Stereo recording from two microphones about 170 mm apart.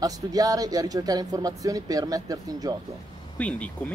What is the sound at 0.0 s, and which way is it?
Speech, 20° right (ahead or behind).